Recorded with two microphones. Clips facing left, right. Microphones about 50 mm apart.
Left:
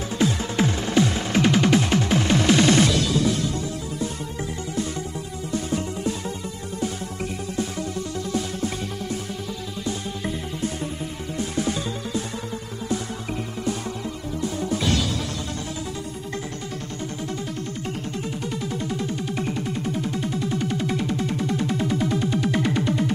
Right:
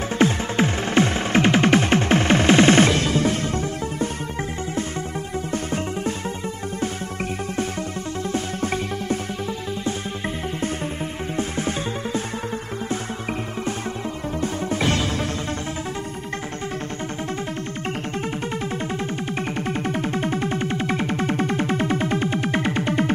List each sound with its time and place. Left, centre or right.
0.2 s music: right
5.5 s music: right
8.3 s music: right
11.3 s music: right
17.5 s music: right